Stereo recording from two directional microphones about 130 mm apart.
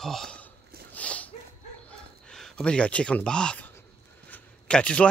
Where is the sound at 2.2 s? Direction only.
5° left (ahead or behind).